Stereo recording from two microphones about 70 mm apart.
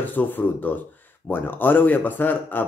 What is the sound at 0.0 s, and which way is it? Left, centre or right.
Speech, left.